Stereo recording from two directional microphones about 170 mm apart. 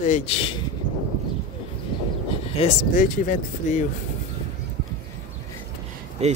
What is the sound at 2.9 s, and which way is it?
Speech, 50° left (ahead or behind).